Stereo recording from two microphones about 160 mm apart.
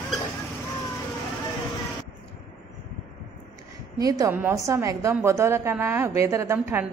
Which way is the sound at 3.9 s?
20° right (ahead or behind).